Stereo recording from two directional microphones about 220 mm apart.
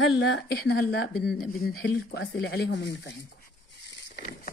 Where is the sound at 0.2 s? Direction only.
50° left (ahead or behind).